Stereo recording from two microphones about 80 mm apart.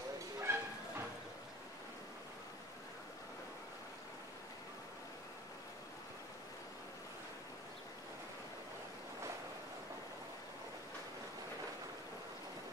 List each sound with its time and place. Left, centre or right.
0.4 s bow-wow: right